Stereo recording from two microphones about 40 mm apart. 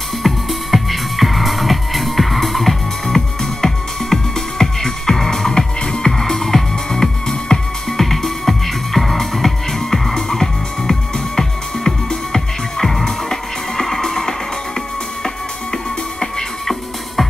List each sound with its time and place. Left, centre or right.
0.2 s music: centre